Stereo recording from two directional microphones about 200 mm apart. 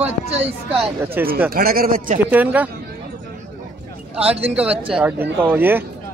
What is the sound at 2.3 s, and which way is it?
Speech, 10° right (ahead or behind).